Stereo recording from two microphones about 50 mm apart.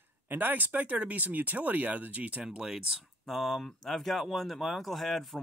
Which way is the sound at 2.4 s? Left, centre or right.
Centre.